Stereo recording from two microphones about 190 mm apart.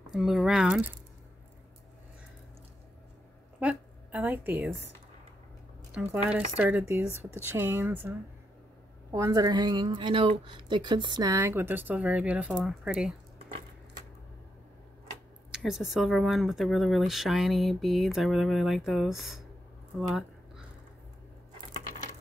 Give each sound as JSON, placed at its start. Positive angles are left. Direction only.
{"t": 0.0, "sound": "speech", "side_deg": 0}
{"t": 3.5, "sound": "a woman's voice", "side_deg": -5}
{"t": 6.2, "sound": "speech", "side_deg": -5}
{"t": 9.1, "sound": "a woman's voice", "side_deg": -20}
{"t": 15.5, "sound": "speech", "side_deg": 0}
{"t": 20.0, "sound": "a sound", "side_deg": 0}